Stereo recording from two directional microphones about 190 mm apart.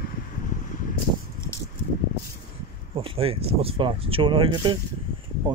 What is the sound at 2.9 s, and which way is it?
Speech, 30° right (ahead or behind).